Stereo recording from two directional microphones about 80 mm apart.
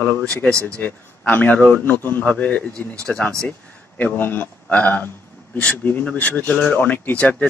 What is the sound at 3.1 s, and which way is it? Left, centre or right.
Speech, centre.